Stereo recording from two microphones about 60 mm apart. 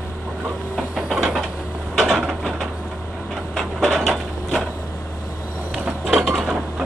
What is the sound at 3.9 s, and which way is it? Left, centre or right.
Mechanisms, centre.